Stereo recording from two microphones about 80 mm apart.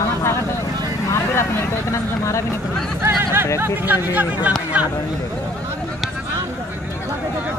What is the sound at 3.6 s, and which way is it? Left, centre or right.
Speech, right.